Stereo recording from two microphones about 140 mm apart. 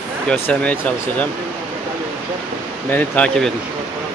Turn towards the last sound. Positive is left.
turn(degrees=10)  # may be behind; listen again after turning